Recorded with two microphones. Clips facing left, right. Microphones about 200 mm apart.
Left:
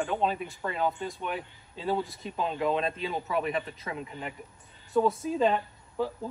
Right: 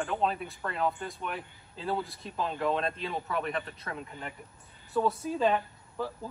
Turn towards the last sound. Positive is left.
turn(degrees=0)  # may be behind; listen again after turning